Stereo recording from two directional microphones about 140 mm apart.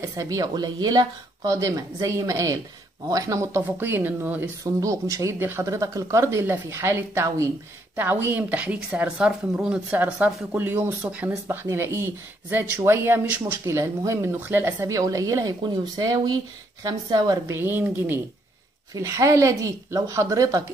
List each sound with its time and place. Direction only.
0.1 s a woman's voice: 25° right (ahead or behind)
17.6 s a woman's voice: 15° right (ahead or behind)